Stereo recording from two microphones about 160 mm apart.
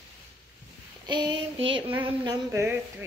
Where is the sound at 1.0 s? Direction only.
30° right (ahead or behind).